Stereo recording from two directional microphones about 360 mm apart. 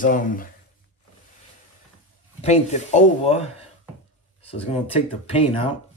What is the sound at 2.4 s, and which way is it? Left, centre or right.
Speech, centre.